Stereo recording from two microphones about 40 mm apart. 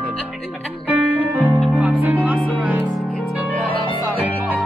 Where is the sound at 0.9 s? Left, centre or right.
Right.